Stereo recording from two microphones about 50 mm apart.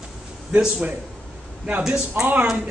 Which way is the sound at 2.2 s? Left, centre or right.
Right.